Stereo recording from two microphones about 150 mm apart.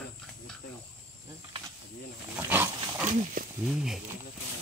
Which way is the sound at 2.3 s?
15° right (ahead or behind).